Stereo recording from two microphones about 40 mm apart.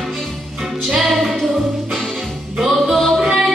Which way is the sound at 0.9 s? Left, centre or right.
Centre.